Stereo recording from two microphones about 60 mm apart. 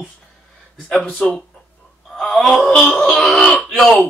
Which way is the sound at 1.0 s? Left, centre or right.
Left.